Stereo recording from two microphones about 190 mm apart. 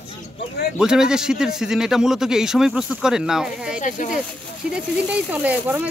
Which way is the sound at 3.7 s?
40° left (ahead or behind).